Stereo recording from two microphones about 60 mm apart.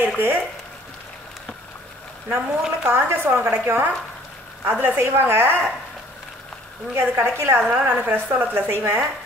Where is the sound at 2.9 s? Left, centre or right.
Right.